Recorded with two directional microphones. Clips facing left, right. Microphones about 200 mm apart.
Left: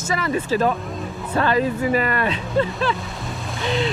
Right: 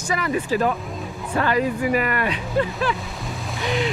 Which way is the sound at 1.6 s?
30° left (ahead or behind).